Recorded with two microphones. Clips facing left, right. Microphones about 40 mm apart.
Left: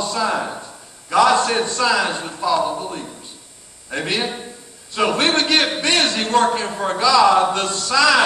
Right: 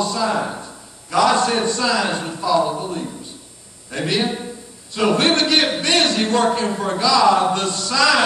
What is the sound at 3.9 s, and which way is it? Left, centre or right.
A man's voice, left.